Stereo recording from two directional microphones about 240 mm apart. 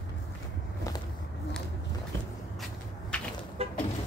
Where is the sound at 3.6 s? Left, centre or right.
Right.